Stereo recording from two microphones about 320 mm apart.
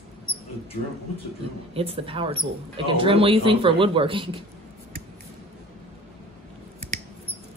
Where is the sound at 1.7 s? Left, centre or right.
Centre.